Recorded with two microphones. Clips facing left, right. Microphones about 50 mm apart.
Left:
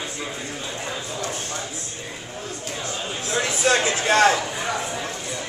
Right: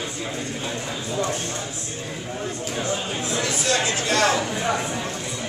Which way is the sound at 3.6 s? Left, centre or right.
Left.